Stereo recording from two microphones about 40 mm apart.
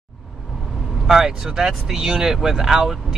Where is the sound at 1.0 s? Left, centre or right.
Centre.